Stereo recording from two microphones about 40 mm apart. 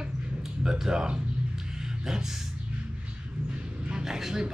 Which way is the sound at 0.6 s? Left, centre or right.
Centre.